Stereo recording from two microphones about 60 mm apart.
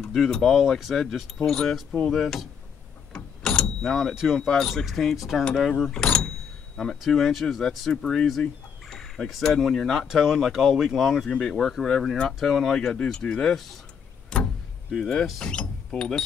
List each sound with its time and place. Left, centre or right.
0.0 s speech: centre
0.6 s speech: centre
3.4 s door: centre
4.1 s speech: centre
4.4 s speech: centre
4.8 s speech: centre
5.4 s speech: centre
7.0 s fowl: centre
9.4 s speech: centre
10.0 s speech: centre
14.3 s a sound: centre
14.9 s speech: centre